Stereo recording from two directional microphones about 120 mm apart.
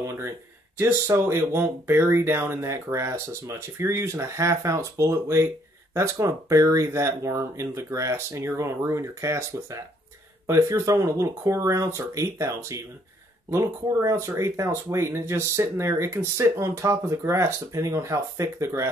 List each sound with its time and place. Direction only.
0.0 s speech: 25° right (ahead or behind)